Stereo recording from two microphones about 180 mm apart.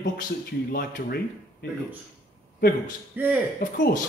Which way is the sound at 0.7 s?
55° left (ahead or behind).